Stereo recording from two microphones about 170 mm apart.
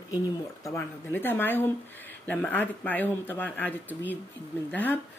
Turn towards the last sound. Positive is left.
turn(degrees=10)  # may be behind; listen again after turning